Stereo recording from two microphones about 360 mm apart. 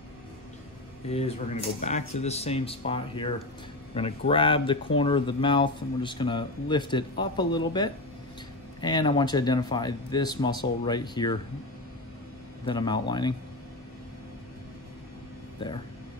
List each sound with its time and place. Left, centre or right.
1.0 s speech: centre
12.6 s speech: centre
15.6 s speech: centre